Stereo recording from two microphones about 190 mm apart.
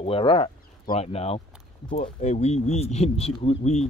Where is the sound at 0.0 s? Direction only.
30° left (ahead or behind).